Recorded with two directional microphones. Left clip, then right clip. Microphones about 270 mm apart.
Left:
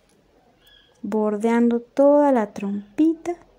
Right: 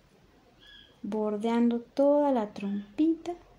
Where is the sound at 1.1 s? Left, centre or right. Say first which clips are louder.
Left 8 dB; left.